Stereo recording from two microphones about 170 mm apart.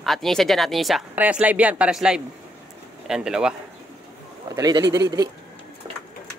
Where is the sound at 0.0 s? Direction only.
Centre (ahead or behind).